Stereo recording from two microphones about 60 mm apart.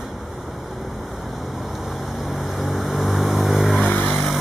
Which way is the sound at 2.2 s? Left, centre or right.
Centre.